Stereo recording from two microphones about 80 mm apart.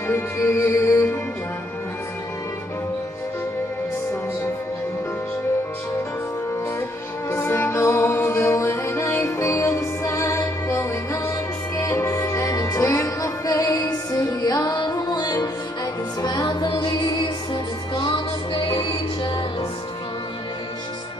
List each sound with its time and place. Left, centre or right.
0.1 s music: left
7.2 s music: left
17.9 s music: left